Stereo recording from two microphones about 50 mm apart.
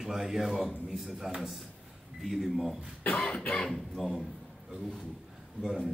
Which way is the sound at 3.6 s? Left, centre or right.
Centre.